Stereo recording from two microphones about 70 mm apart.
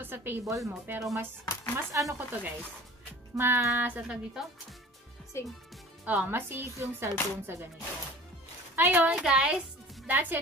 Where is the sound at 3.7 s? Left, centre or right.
Right.